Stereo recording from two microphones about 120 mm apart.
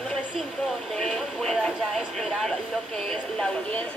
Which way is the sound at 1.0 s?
5° left (ahead or behind).